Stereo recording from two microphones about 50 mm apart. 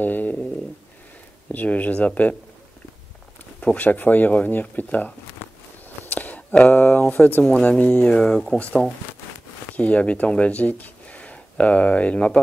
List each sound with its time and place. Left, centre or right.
0.0 s a sound: left
1.5 s speech: left
3.6 s speech: left
6.0 s a sound: left
6.5 s speech: left
7.2 s speech: left
7.6 s speech: left
8.2 s speech: centre